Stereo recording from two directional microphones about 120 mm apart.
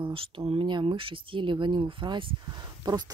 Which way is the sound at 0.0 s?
50° right (ahead or behind).